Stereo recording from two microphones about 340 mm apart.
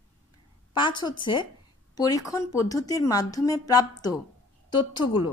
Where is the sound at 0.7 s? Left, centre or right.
Centre.